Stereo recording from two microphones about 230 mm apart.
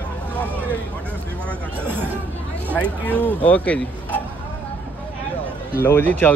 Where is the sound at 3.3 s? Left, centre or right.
Centre.